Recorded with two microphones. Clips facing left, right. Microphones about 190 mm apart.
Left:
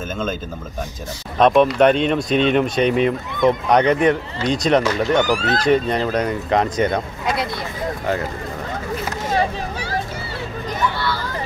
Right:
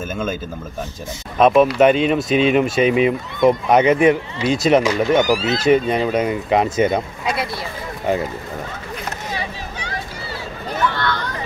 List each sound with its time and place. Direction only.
0.1 s speech: 10° right (ahead or behind)
1.4 s speech: 5° right (ahead or behind)
9.3 s vehicle: 45° left (ahead or behind)
10.8 s a sound: 10° left (ahead or behind)